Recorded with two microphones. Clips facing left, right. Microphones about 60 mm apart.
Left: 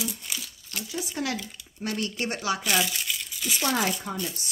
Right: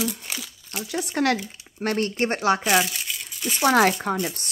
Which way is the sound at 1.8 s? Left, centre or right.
Right.